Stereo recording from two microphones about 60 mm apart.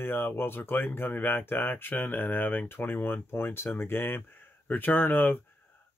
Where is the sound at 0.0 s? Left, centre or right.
Left.